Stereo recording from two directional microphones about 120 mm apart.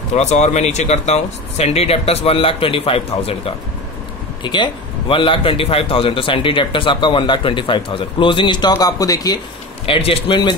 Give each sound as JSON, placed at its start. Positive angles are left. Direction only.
{"t": 0.1, "sound": "speech", "side_deg": 70}
{"t": 4.4, "sound": "a man's voice", "side_deg": 40}
{"t": 9.8, "sound": "a man's voice", "side_deg": 50}